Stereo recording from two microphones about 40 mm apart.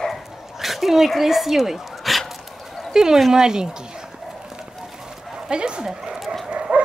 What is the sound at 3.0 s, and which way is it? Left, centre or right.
Speech, centre.